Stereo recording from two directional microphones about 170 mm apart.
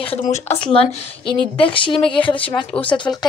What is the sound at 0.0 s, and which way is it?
Speech, 35° left (ahead or behind).